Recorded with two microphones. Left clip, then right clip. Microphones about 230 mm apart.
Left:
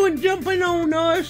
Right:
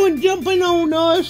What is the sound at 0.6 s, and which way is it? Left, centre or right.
Speech, right.